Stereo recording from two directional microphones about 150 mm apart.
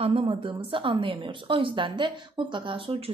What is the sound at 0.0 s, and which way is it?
A woman's voice, 40° right (ahead or behind).